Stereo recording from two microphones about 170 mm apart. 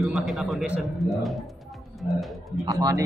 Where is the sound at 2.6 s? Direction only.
20° right (ahead or behind).